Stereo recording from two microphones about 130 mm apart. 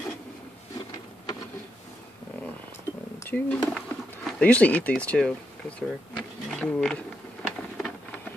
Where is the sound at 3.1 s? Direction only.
15° left (ahead or behind).